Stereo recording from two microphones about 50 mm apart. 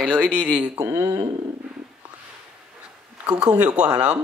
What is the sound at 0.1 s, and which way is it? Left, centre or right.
Speech, right.